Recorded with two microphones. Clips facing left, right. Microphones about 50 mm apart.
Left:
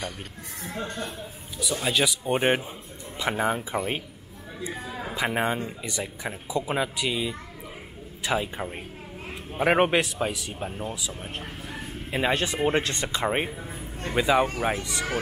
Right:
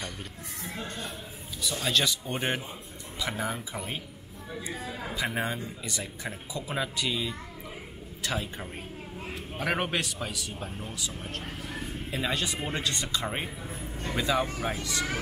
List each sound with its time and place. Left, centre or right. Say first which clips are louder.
0.7 s speech: left 6 dB; left
1.6 s a man's voice: left 3 dB; centre
2.2 s a man's voice: left 8 dB; left
6.8 s a man's voice: left 3 dB; centre
12.1 s a man's voice: left 6 dB; left